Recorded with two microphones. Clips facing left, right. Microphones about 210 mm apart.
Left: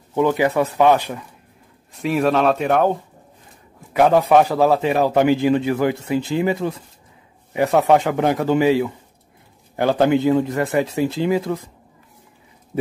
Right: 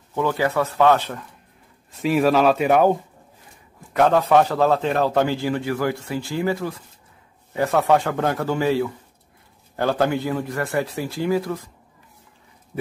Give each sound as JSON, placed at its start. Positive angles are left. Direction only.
{"t": 0.1, "sound": "a man's voice", "side_deg": 15}
{"t": 1.9, "sound": "speech", "side_deg": 0}
{"t": 3.9, "sound": "a man's voice", "side_deg": 10}